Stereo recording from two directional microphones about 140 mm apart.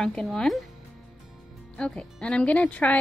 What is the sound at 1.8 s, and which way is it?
Speech, 5° left (ahead or behind).